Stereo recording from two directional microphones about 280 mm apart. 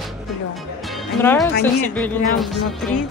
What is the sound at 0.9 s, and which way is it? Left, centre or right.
Music, centre.